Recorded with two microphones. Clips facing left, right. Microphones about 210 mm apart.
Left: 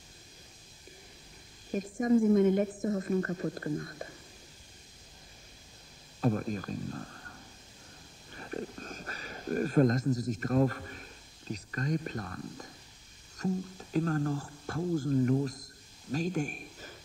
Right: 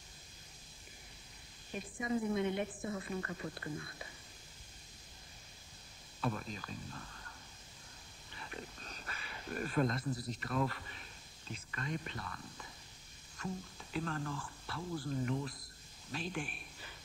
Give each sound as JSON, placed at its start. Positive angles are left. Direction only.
{"t": 1.7, "sound": "a woman's voice", "side_deg": 45}
{"t": 6.2, "sound": "speech", "side_deg": 45}
{"t": 8.4, "sound": "a woman's voice", "side_deg": 45}